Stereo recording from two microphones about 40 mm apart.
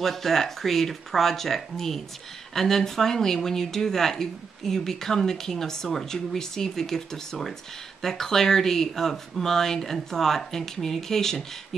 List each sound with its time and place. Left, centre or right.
0.0 s speech: centre